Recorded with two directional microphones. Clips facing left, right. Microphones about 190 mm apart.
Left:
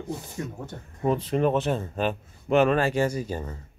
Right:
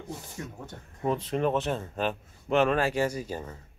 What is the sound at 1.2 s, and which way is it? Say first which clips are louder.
Speech: left 3 dB; 5° left (ahead or behind).